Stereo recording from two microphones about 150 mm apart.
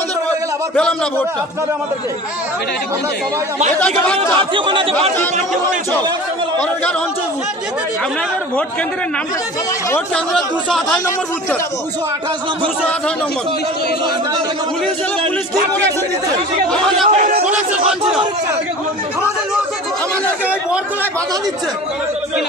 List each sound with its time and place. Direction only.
0.7 s speech: 5° left (ahead or behind)
3.8 s speech: 10° left (ahead or behind)
4.4 s speech: 35° right (ahead or behind)
9.8 s speech: 10° left (ahead or behind)
10.3 s speech: centre (ahead or behind)
16.7 s speech: centre (ahead or behind)
20.4 s speech: 10° right (ahead or behind)